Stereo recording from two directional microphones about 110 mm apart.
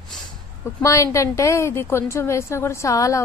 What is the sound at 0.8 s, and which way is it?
A woman's voice, 25° left (ahead or behind).